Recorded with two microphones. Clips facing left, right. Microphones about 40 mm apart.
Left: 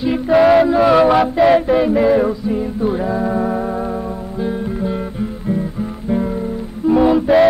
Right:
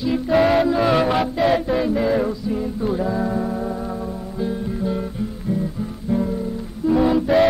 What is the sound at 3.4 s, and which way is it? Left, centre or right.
Music, left.